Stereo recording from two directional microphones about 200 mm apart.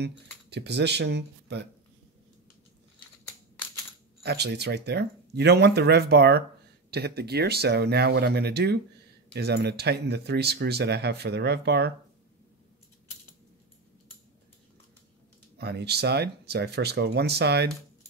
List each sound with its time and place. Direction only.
0.0 s speech: 55° right (ahead or behind)
4.2 s speech: 55° right (ahead or behind)
15.5 s speech: 55° right (ahead or behind)